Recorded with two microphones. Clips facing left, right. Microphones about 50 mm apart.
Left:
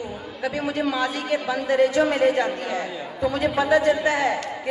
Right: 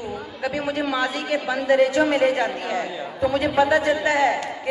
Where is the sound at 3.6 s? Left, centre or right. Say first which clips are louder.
Right 1 dB; right.